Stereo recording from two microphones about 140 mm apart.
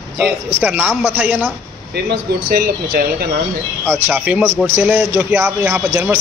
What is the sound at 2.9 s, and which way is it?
Speech, 90° right.